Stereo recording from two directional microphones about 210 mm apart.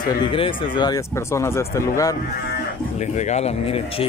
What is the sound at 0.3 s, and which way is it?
Speech, 25° left (ahead or behind).